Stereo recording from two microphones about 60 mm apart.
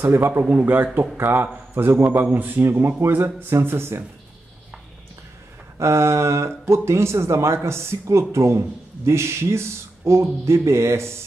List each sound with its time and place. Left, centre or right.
0.0 s speech: right
2.3 s speech: right
2.6 s speech: right
3.1 s speech: right
5.8 s speech: right